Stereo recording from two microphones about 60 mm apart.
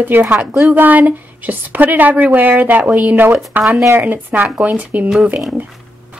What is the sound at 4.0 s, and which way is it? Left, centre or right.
Speech, right.